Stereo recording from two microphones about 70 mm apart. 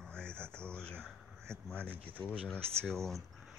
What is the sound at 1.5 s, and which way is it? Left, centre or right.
Speech, right.